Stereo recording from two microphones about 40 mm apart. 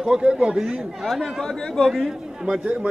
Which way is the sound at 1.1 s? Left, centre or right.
Centre.